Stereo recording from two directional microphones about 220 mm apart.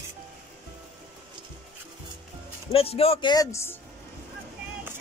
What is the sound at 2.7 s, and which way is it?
A man's voice, 25° left (ahead or behind).